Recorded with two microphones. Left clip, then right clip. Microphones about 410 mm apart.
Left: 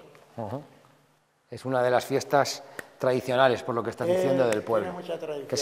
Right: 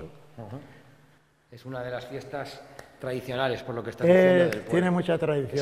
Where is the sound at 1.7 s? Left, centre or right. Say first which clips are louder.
Left 10 dB; left.